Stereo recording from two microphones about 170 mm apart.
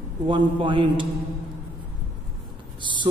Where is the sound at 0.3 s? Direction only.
30° right (ahead or behind).